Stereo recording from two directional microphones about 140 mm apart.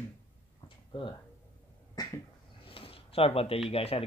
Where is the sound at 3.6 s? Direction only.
45° left (ahead or behind).